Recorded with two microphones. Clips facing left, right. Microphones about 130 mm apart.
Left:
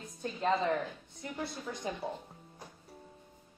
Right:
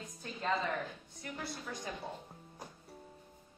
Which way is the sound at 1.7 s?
25° left (ahead or behind).